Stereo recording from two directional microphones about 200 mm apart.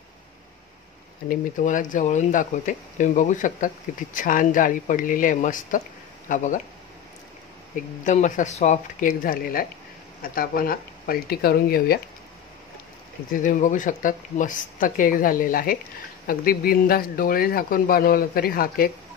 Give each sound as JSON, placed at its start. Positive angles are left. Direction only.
{"t": 1.3, "sound": "speech", "side_deg": 40}
{"t": 8.0, "sound": "speech", "side_deg": 40}
{"t": 13.3, "sound": "speech", "side_deg": 40}